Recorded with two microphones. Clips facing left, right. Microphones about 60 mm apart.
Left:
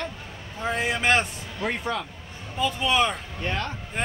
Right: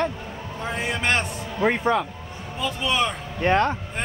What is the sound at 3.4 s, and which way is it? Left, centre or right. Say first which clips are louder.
Speech: right 10 dB; right.